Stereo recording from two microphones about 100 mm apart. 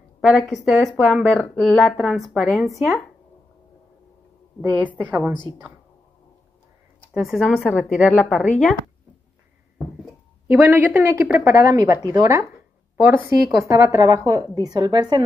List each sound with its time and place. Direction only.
0.2 s speech: centre (ahead or behind)
4.6 s a woman's voice: 15° right (ahead or behind)
7.2 s speech: 5° right (ahead or behind)
10.5 s a woman's voice: 20° right (ahead or behind); by 15.2 s 45° right (ahead or behind)